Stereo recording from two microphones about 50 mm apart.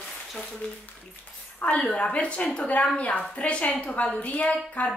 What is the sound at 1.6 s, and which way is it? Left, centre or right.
A woman's voice, left.